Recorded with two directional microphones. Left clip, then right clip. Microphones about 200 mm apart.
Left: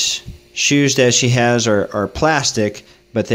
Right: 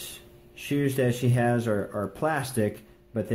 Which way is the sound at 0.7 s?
35° left (ahead or behind).